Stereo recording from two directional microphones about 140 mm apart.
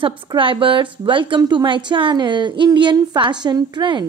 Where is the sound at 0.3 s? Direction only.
40° right (ahead or behind).